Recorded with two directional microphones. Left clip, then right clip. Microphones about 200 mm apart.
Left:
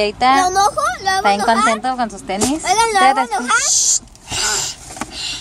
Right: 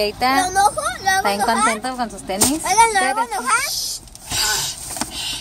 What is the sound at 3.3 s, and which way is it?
Speech, 40° left (ahead or behind).